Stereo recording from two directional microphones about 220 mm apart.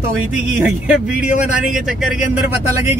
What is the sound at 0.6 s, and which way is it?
Speech, 5° right (ahead or behind).